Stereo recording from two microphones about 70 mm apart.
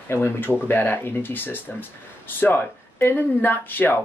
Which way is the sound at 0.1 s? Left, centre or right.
Left.